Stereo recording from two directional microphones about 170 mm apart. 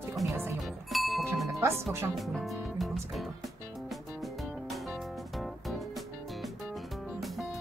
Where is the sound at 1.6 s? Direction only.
15° right (ahead or behind).